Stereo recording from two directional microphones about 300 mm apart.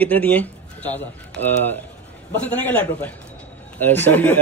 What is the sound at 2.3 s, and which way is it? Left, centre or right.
A man's voice, centre.